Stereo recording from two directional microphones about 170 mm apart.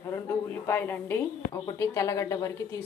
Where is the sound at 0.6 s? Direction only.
10° left (ahead or behind).